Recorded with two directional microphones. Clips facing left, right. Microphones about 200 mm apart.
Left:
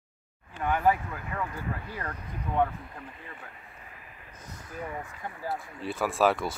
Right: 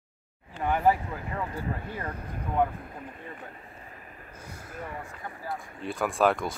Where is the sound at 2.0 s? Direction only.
10° right (ahead or behind).